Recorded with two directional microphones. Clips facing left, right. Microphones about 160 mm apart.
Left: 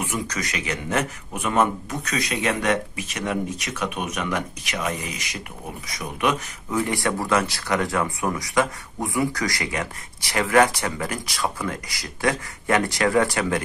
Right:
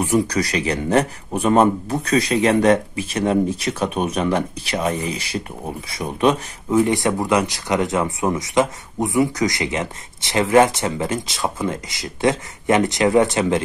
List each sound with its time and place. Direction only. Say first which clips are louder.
0.0 s a man's voice: right 9 dB; 35° right (ahead or behind)